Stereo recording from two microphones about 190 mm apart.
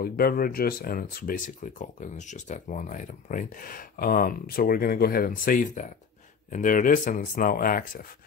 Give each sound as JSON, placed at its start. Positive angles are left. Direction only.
{"t": 0.0, "sound": "speech", "side_deg": 50}